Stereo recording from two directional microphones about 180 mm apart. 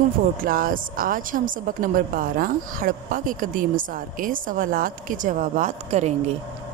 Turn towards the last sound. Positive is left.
turn(degrees=-40)  # may be behind; listen again after turning